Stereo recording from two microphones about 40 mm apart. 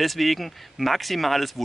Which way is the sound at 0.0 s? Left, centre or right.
Centre.